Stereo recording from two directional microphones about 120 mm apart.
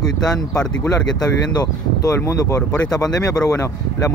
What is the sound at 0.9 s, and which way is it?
Speech, 35° left (ahead or behind).